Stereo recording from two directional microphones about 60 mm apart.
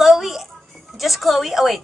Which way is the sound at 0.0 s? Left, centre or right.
Centre.